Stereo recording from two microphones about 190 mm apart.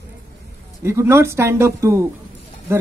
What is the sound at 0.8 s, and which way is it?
Speech, 15° right (ahead or behind).